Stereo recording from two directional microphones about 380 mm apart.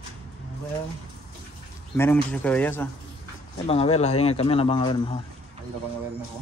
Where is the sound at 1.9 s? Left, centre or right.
Centre.